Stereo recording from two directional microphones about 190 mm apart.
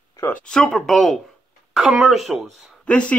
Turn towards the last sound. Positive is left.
turn(degrees=5)  # may be behind; listen again after turning